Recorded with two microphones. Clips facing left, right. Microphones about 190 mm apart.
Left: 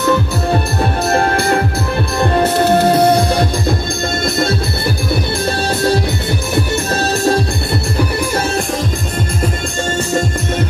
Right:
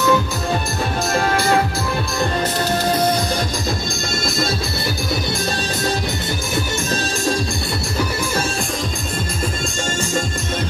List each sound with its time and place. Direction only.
1.0 s music: 60° left (ahead or behind)
5.5 s music: 60° left (ahead or behind)